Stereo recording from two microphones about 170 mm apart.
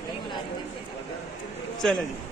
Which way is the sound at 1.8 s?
5° left (ahead or behind).